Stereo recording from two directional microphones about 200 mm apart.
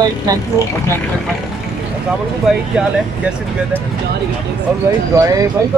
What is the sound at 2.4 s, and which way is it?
Speech, 5° right (ahead or behind).